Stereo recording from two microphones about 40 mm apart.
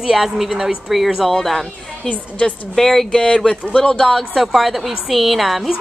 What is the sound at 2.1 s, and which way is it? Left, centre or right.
Speech, left.